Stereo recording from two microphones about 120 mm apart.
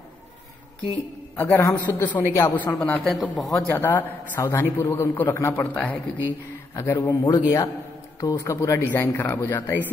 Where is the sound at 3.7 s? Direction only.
20° left (ahead or behind).